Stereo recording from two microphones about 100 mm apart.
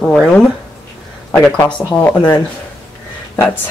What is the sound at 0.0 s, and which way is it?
Speech, 5° left (ahead or behind).